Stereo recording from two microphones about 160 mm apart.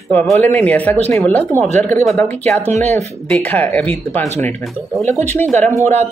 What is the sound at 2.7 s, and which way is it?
Speech, 45° right (ahead or behind).